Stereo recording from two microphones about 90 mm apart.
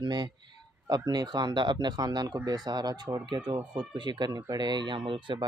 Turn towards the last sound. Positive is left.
turn(degrees=-70)  # may be behind; listen again after turning